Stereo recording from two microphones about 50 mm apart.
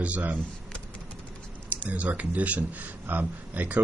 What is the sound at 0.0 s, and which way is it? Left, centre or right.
Speech, right.